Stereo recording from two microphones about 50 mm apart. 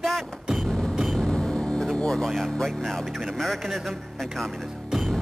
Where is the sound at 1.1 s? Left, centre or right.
Centre.